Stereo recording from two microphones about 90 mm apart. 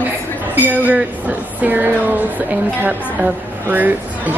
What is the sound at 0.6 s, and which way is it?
Speech, 20° right (ahead or behind).